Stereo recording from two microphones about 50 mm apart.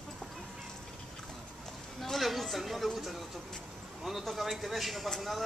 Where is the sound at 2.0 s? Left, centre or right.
Centre.